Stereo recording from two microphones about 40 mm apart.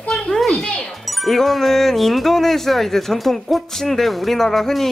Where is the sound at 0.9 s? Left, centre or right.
Centre.